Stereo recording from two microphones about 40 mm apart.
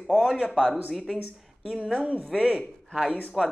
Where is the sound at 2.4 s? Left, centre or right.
Centre.